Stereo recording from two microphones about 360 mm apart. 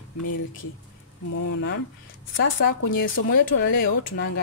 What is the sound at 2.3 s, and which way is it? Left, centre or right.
Speech, left.